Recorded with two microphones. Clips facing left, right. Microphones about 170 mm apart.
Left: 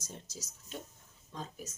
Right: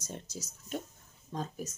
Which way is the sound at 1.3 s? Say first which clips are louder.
Right 6 dB; 45° right (ahead or behind).